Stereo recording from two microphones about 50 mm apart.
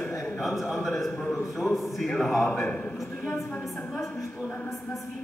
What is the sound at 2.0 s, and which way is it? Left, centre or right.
Speech, centre.